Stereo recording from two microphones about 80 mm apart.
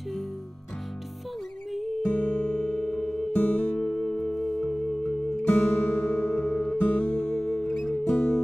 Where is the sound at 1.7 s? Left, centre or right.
Centre.